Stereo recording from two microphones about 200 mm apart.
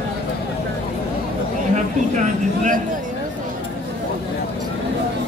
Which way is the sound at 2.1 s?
40° right (ahead or behind).